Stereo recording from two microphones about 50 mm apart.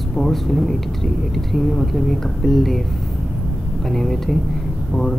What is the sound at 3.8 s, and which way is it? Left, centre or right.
Speech, centre.